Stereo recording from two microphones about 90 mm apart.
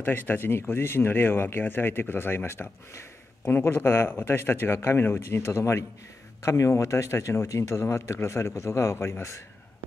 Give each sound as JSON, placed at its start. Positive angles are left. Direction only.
{"t": 0.0, "sound": "speech", "side_deg": 20}